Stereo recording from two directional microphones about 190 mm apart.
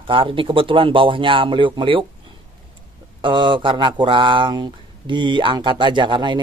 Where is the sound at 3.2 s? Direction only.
25° right (ahead or behind).